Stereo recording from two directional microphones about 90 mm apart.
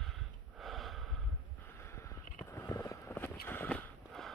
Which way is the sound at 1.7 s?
30° left (ahead or behind).